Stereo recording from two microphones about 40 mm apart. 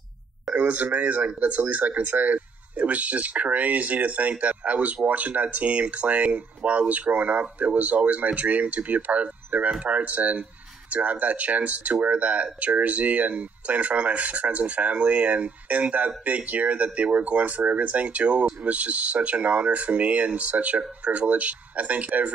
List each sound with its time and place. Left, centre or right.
0.6 s speech: right